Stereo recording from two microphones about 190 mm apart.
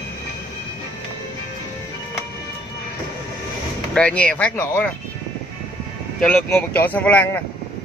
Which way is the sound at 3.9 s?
5° left (ahead or behind).